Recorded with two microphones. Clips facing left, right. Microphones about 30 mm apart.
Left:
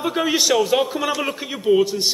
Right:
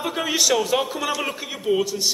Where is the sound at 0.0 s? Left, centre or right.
Centre.